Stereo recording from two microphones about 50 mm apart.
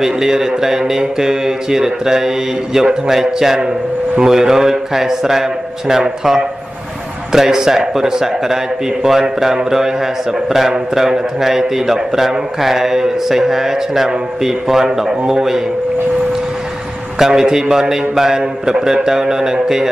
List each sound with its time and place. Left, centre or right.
0.0 s a man's voice: centre
17.2 s a man's voice: centre